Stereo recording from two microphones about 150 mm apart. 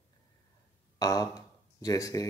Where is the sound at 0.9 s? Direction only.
25° left (ahead or behind).